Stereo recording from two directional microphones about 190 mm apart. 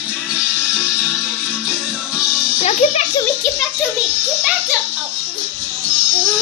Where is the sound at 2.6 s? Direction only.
35° left (ahead or behind).